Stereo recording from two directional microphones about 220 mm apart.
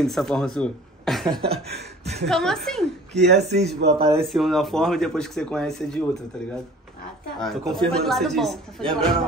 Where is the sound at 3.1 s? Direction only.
50° right (ahead or behind).